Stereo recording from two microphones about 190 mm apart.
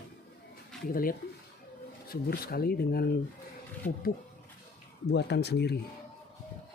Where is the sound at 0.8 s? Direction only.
50° left (ahead or behind).